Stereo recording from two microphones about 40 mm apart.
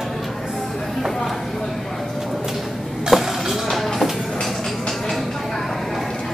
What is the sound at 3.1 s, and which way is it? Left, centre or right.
Music, centre.